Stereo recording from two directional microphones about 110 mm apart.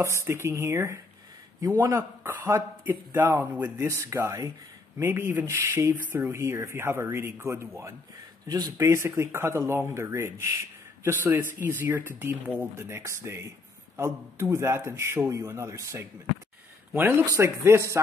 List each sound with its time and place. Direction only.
0.0 s speech: 25° right (ahead or behind)
8.8 s speech: 25° right (ahead or behind)